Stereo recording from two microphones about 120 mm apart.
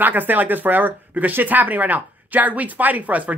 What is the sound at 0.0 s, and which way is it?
Speech, 15° right (ahead or behind).